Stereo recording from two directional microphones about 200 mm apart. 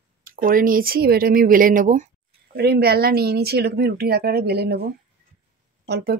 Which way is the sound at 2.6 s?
55° right (ahead or behind).